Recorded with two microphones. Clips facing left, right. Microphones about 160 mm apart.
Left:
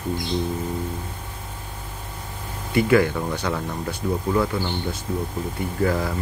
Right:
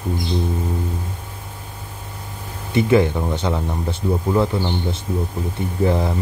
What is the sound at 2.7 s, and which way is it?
Speech, 20° right (ahead or behind).